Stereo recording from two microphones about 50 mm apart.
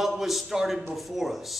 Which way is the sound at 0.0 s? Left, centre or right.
Centre.